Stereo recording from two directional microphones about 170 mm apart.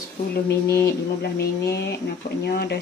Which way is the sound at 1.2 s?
70° left (ahead or behind).